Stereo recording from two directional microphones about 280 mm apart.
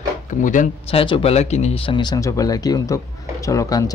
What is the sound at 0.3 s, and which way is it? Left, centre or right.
Speech, left.